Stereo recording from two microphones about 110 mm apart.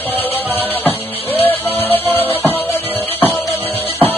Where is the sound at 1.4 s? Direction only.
20° left (ahead or behind).